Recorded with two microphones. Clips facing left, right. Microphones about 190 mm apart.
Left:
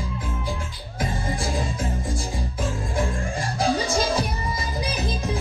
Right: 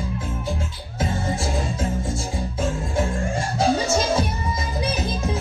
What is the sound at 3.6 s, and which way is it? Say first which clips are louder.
Music: right 2 dB; 25° right (ahead or behind).